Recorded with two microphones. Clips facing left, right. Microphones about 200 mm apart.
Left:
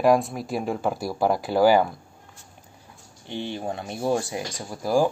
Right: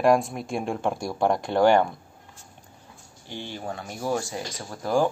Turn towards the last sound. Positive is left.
turn(degrees=10)  # may be behind; listen again after turning